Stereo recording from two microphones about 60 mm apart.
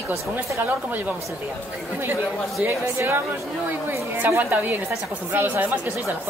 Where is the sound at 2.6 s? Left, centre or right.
Right.